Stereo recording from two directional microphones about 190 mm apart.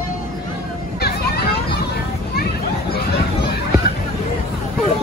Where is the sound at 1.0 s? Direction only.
55° left (ahead or behind).